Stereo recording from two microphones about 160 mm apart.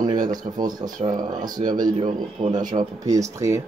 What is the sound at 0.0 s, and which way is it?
Speech, 25° right (ahead or behind).